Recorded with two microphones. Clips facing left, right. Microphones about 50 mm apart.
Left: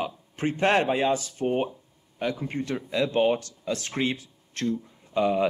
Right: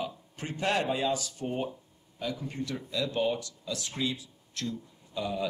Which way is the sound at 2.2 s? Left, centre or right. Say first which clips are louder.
Left 6 dB; left.